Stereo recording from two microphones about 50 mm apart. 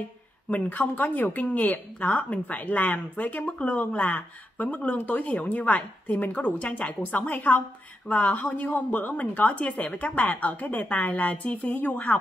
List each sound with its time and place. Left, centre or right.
0.5 s a woman's voice: left